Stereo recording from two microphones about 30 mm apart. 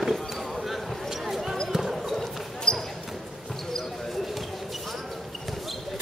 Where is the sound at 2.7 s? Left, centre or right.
Left.